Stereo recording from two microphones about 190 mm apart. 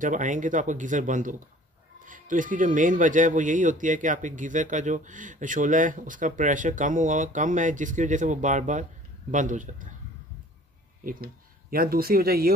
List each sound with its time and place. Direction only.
0.0 s speech: 40° right (ahead or behind)
11.7 s speech: 50° right (ahead or behind)